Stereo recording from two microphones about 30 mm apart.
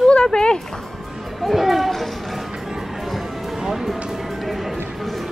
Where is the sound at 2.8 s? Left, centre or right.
Centre.